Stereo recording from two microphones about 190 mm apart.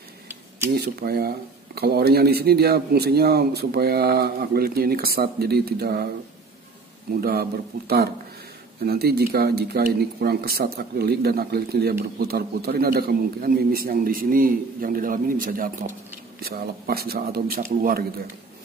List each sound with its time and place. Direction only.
0.7 s a man's voice: 55° right (ahead or behind)
7.1 s a man's voice: 50° right (ahead or behind)